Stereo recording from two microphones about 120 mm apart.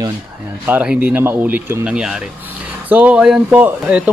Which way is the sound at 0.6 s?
10° right (ahead or behind).